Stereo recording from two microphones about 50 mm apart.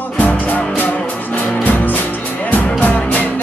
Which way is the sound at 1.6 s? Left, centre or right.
Left.